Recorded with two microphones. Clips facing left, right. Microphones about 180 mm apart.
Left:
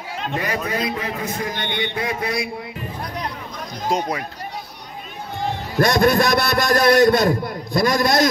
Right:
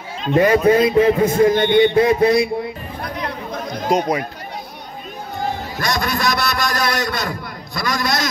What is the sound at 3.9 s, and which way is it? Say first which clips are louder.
Speech: right 4 dB; 20° right (ahead or behind).